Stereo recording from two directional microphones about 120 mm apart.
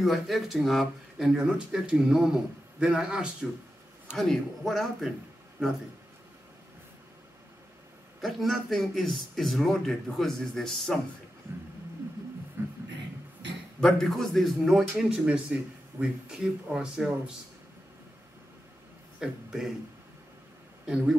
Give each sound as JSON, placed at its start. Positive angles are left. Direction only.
{"t": 0.0, "sound": "a man's voice", "side_deg": 0}
{"t": 4.2, "sound": "a man's voice", "side_deg": 5}
{"t": 8.2, "sound": "a man's voice", "side_deg": 0}
{"t": 12.6, "sound": "a sound", "side_deg": -20}
{"t": 13.7, "sound": "a man's voice", "side_deg": 5}
{"t": 19.1, "sound": "a man's voice", "side_deg": -5}
{"t": 20.8, "sound": "a man's voice", "side_deg": -5}